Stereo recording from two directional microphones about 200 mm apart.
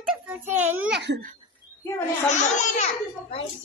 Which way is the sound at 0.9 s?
60° right (ahead or behind).